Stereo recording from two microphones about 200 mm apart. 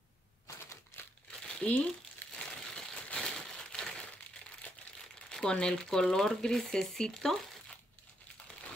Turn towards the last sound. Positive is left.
turn(degrees=5)  # may be behind; listen again after turning